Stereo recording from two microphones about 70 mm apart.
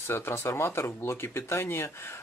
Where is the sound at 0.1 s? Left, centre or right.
Left.